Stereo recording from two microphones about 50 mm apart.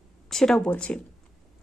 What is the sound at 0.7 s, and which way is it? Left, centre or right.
Speech, left.